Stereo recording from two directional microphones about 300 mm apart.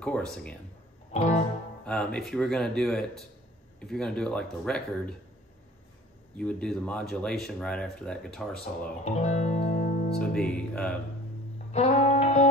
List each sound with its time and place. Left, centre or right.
0.0 s speech: centre
1.1 s music: left
1.9 s speech: centre
6.3 s speech: centre
9.0 s music: left
10.3 s speech: centre
11.7 s music: left